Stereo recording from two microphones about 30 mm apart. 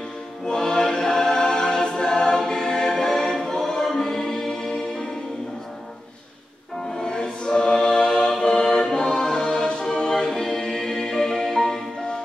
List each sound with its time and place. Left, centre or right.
0.5 s choir: centre
3.9 s music: centre
6.9 s choir: left
11.4 s music: centre